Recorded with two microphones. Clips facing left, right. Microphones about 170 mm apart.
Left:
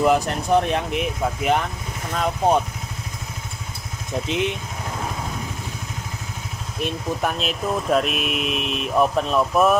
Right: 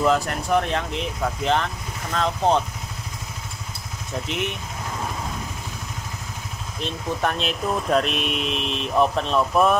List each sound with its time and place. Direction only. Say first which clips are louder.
0.0 s speech: left 2 dB; 20° left (ahead or behind)
4.3 s speech: left 5 dB; 20° left (ahead or behind)
6.8 s speech: left 1 dB; 5° left (ahead or behind)